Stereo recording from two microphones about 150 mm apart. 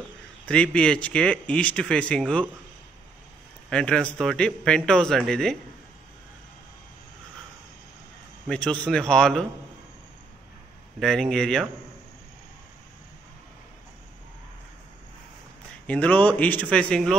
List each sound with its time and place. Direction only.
0.5 s speech: 5° left (ahead or behind)
3.7 s speech: 5° left (ahead or behind)
8.5 s speech: 5° left (ahead or behind)
11.0 s speech: 5° left (ahead or behind)
15.9 s speech: 10° left (ahead or behind)